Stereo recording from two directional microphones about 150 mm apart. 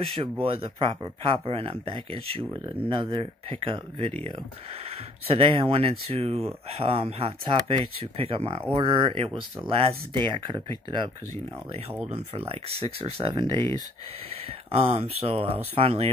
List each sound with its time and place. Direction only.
0.0 s speech: 40° right (ahead or behind)
12.1 s speech: 40° right (ahead or behind)
13.6 s speech: 20° left (ahead or behind)
14.7 s speech: 40° right (ahead or behind)